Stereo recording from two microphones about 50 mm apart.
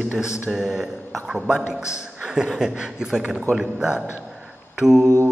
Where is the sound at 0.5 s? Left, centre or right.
Centre.